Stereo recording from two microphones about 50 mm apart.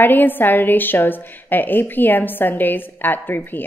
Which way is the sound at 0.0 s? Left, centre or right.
Left.